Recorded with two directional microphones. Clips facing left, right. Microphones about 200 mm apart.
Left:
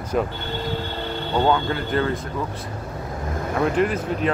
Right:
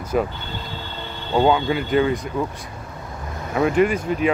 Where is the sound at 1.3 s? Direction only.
10° right (ahead or behind).